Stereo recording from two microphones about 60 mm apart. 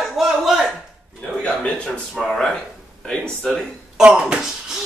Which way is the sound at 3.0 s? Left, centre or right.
Centre.